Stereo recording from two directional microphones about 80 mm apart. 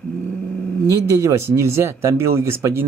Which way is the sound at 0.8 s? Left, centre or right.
Right.